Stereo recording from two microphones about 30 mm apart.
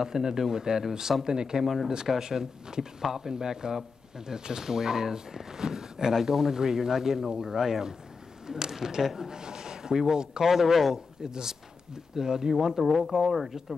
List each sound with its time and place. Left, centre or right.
0.0 s speech: centre
1.6 s speech: centre
2.0 s speech: centre
10.5 s speech: centre
11.2 s speech: right; by 13.7 s centre